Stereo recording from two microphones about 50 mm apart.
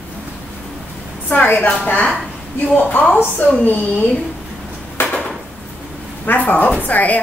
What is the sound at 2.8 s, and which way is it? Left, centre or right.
Speech, left.